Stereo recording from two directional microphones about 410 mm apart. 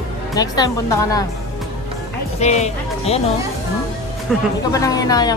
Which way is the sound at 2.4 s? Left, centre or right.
Centre.